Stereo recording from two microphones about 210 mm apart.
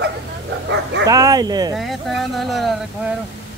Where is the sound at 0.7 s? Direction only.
55° right (ahead or behind).